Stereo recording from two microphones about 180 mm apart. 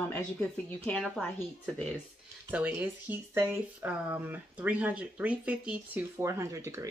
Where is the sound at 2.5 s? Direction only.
10° right (ahead or behind).